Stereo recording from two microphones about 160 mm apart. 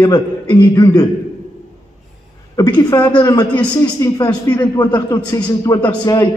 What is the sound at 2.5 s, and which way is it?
A man's voice, 25° left (ahead or behind).